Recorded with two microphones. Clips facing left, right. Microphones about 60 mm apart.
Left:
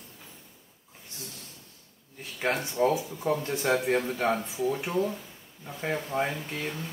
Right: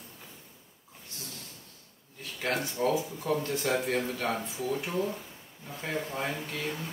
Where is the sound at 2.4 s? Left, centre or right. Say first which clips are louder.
Left 4 dB; left.